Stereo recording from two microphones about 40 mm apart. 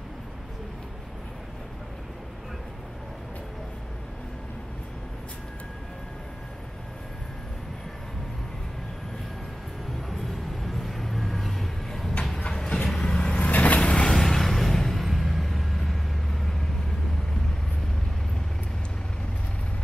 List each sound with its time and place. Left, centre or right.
10.0 s vehicle: centre
12.4 s vehicle: left
13.4 s vehicle: left
14.0 s vehicle: centre